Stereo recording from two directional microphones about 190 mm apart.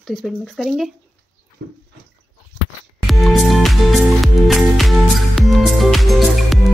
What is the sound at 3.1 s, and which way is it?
Music, centre (ahead or behind).